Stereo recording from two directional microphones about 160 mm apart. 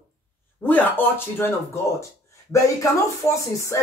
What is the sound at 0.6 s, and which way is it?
Speech, 10° left (ahead or behind).